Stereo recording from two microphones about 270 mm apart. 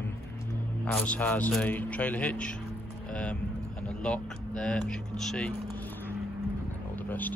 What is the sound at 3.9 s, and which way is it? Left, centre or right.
Speech, centre.